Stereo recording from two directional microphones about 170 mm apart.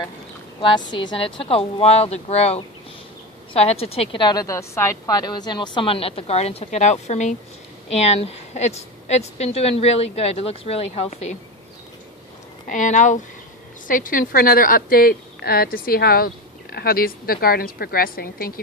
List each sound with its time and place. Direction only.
0.6 s a woman's voice: 30° left (ahead or behind)
12.6 s a woman's voice: 45° left (ahead or behind)